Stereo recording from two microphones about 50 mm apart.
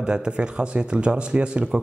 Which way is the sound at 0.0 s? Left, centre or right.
Centre.